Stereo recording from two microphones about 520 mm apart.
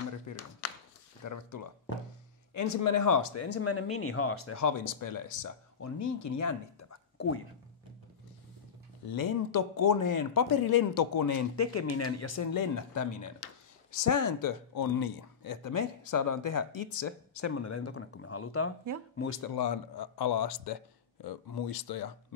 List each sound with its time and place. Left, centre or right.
0.3 s a sound: left
1.2 s speech: left
9.1 s speech: left
19.5 s speech: left